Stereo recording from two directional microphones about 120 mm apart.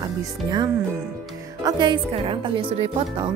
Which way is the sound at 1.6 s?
40° right (ahead or behind).